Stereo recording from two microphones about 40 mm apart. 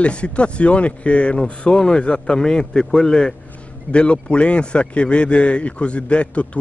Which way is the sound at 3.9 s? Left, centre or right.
Left.